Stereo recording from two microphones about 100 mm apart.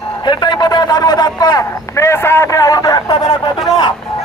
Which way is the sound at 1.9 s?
25° left (ahead or behind).